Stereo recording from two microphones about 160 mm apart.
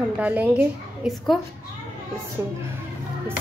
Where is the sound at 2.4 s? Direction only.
15° right (ahead or behind).